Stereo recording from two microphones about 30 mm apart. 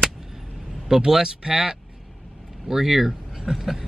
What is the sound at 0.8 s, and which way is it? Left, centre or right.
Speech, centre.